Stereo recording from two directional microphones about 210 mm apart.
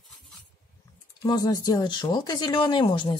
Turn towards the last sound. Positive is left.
turn(degrees=20)  # may be behind; listen again after turning